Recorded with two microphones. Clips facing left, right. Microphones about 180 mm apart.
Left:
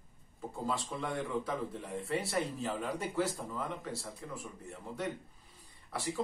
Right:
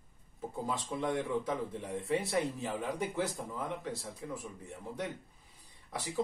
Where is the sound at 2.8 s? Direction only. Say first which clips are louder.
Even; 20° right (ahead or behind).